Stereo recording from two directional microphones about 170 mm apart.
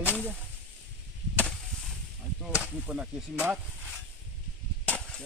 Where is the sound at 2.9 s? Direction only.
5° right (ahead or behind).